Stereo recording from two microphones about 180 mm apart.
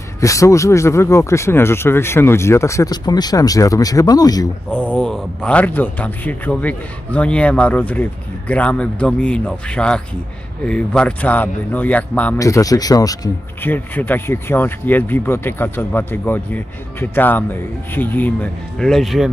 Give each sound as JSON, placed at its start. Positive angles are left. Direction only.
{"t": 0.2, "sound": "speech", "side_deg": 15}
{"t": 4.6, "sound": "speech", "side_deg": 5}